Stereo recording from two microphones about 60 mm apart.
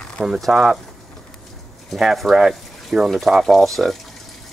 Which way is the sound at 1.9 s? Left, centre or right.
Centre.